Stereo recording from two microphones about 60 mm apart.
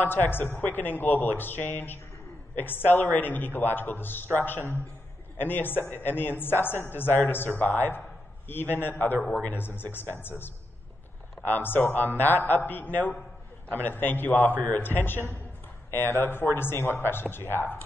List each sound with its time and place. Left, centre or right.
0.0 s a woman's voice: left
11.4 s a woman's voice: left